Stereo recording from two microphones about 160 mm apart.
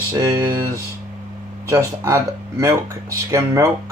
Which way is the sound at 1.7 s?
20° right (ahead or behind).